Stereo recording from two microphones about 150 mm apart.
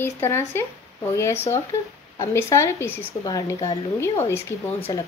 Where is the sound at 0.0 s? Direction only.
15° left (ahead or behind).